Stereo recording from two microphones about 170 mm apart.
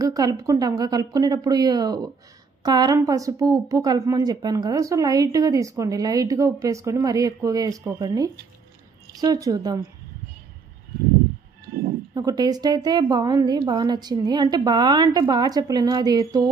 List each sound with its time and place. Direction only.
0.0 s a woman's voice: 20° right (ahead or behind)
12.1 s a woman's voice: 25° right (ahead or behind)